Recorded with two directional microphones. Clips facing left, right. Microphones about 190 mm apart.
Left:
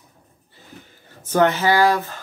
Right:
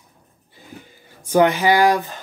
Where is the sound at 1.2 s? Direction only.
10° right (ahead or behind).